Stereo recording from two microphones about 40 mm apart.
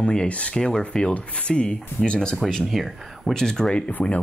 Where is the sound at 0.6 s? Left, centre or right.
Centre.